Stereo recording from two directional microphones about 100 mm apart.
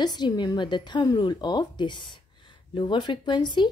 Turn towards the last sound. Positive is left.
turn(degrees=50)  # may be behind; listen again after turning